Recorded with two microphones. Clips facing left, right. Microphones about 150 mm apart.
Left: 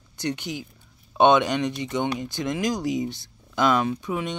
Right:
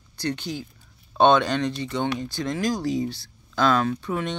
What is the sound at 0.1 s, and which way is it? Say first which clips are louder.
Speech: even; 20° left (ahead or behind).